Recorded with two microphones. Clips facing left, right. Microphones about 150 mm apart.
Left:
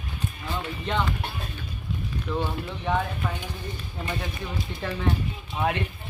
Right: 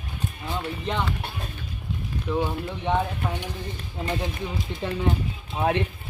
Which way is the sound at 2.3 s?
20° right (ahead or behind).